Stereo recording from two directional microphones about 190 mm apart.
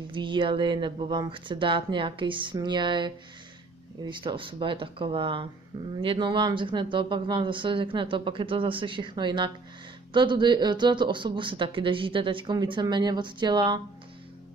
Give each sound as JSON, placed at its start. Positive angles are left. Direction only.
{"t": 0.1, "sound": "speech", "side_deg": -25}